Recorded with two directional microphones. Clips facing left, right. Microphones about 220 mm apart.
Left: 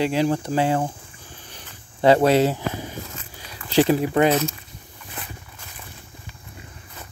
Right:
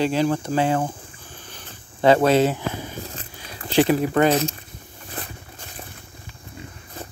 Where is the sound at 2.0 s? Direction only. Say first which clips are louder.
Even; 30° left (ahead or behind).